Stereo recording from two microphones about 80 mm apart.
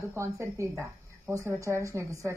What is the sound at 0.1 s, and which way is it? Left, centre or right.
Speech, right.